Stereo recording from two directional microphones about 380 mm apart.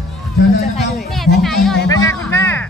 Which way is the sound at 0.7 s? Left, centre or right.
Centre.